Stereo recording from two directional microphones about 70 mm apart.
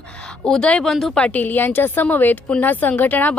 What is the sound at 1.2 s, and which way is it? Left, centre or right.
A woman's voice, left.